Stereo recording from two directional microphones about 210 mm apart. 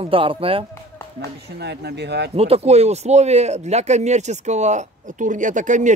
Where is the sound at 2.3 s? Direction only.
30° right (ahead or behind).